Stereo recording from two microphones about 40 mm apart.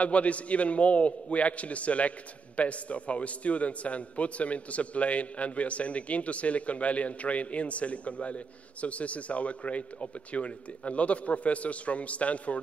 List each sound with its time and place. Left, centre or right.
0.0 s a man's voice: left